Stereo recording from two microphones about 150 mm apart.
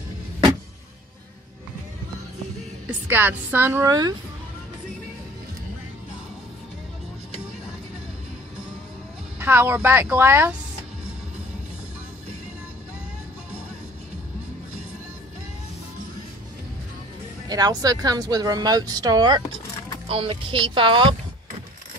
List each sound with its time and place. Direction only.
3.1 s speech: 10° right (ahead or behind)
9.4 s speech: 15° right (ahead or behind)
17.5 s speech: 25° right (ahead or behind)